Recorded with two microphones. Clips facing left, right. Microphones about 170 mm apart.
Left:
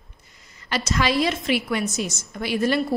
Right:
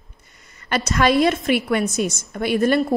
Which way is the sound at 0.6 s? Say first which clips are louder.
Right 5 dB; 55° right (ahead or behind).